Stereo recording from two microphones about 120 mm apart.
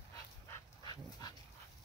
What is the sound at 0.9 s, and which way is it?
Dog, 35° left (ahead or behind).